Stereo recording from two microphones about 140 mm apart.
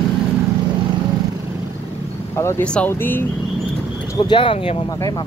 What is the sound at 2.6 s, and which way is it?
Speech, 10° left (ahead or behind).